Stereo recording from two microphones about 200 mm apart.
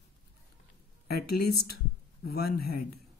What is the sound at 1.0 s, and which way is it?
A woman's voice, 50° left (ahead or behind).